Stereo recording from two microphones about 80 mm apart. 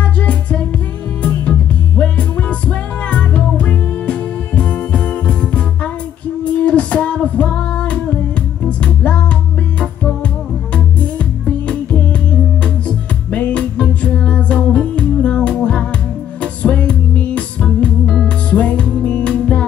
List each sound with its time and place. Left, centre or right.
1.2 s music: centre
11.4 s music: centre
18.0 s music: centre
18.5 s music: centre